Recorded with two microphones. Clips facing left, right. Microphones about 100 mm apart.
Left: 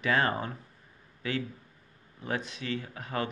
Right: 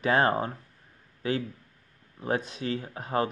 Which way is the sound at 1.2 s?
35° right (ahead or behind).